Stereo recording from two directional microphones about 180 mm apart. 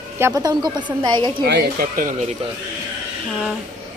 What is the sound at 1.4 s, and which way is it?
Speech, 60° right (ahead or behind).